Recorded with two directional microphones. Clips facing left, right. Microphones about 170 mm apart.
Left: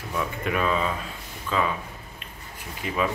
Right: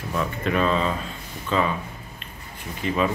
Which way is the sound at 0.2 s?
10° left (ahead or behind).